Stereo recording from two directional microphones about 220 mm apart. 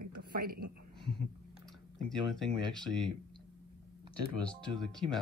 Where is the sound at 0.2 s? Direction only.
45° right (ahead or behind).